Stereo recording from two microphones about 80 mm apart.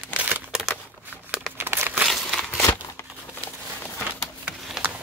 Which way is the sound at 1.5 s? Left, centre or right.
Right.